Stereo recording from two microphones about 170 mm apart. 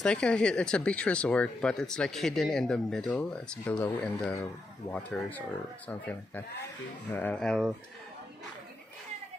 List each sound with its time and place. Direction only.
0.0 s speech: 5° left (ahead or behind)